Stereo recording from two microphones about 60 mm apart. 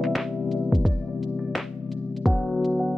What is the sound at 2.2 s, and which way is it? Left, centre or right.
Music, centre.